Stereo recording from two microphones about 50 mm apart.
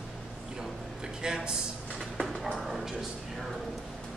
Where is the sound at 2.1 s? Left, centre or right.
Centre.